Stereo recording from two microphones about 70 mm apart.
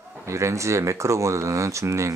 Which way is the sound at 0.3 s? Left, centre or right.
Right.